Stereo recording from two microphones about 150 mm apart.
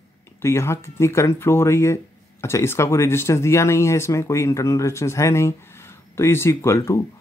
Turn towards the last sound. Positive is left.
turn(degrees=20)  # may be behind; listen again after turning